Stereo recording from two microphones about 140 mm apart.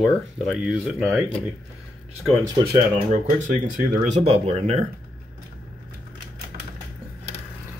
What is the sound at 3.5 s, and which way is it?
Speech, 60° right (ahead or behind).